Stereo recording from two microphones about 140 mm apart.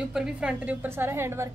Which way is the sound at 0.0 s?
5° right (ahead or behind).